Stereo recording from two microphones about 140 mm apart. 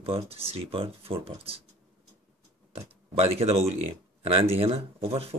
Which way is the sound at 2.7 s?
45° right (ahead or behind).